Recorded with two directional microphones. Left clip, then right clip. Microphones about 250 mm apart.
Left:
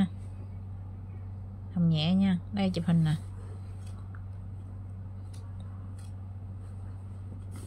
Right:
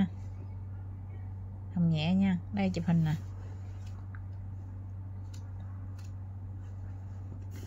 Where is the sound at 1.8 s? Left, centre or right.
Centre.